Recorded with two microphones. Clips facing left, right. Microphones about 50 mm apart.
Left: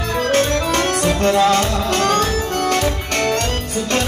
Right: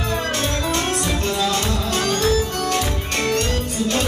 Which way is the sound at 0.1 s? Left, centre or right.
Left.